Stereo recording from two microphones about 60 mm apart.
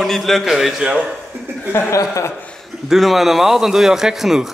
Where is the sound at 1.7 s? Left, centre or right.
Left.